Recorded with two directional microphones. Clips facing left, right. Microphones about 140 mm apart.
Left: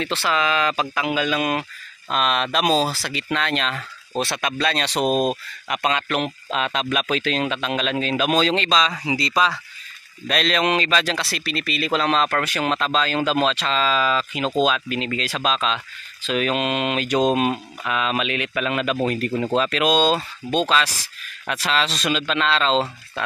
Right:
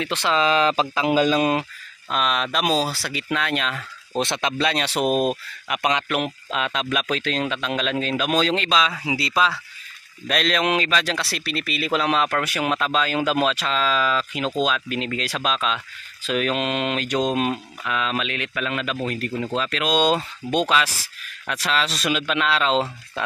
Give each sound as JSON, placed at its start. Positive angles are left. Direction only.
{"t": 0.0, "sound": "speech", "side_deg": -20}
{"t": 0.4, "sound": "speech", "side_deg": -30}
{"t": 2.0, "sound": "speech", "side_deg": 0}
{"t": 4.2, "sound": "speech", "side_deg": -20}
{"t": 20.0, "sound": "speech", "side_deg": -15}
{"t": 21.5, "sound": "speech", "side_deg": 0}